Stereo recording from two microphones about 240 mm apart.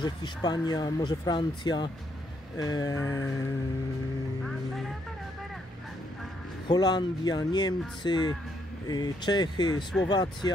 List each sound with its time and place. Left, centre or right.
0.0 s speech: centre
4.5 s music: centre
6.7 s speech: centre